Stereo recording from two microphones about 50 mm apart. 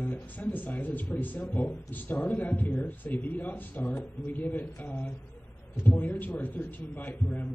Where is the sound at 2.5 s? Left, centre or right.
Left.